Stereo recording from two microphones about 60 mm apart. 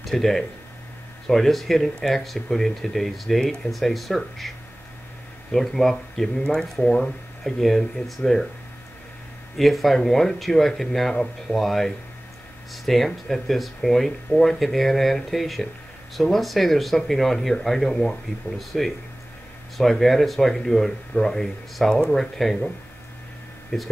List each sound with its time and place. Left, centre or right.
0.0 s speech: centre
9.6 s speech: centre
23.7 s speech: centre